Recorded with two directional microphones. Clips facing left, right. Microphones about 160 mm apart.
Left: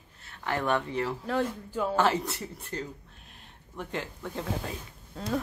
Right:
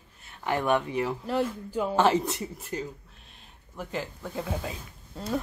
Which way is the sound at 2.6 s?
10° right (ahead or behind).